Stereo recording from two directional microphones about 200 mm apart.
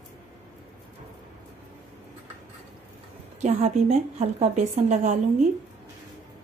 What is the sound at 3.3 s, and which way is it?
Speech, 35° right (ahead or behind).